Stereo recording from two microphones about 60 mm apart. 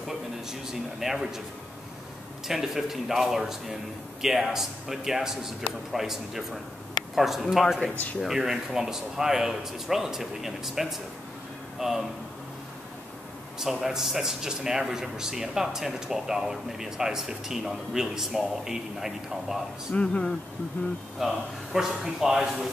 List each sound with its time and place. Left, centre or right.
0.5 s speech: centre
2.4 s speech: centre
13.6 s a man's voice: centre
19.9 s speech: centre
20.8 s speech: left
21.2 s speech: centre